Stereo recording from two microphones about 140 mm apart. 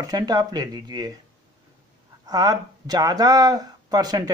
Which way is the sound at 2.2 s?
30° right (ahead or behind).